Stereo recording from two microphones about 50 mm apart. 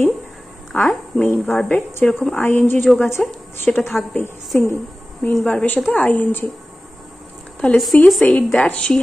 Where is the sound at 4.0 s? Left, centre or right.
Left.